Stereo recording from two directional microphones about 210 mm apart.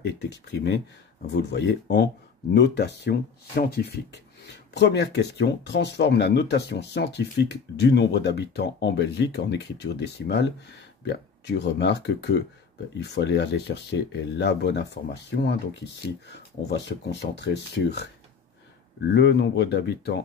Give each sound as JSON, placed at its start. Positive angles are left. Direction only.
{"t": 0.0, "sound": "speech", "side_deg": 55}
{"t": 19.1, "sound": "speech", "side_deg": 55}